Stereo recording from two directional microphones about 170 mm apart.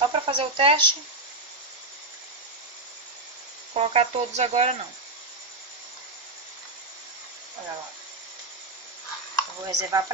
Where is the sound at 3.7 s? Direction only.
40° right (ahead or behind).